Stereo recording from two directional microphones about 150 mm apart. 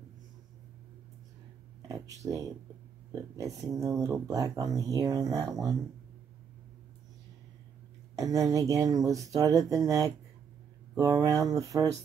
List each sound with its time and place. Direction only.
1.9 s speech: 20° right (ahead or behind)
8.2 s speech: 20° right (ahead or behind)